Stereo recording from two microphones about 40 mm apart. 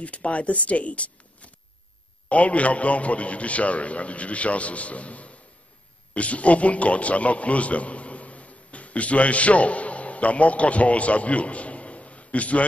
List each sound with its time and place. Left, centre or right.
0.0 s a man's voice: left